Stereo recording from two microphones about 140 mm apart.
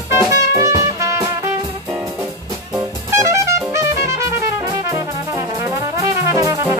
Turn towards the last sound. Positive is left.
turn(degrees=-25)  # may be behind; listen again after turning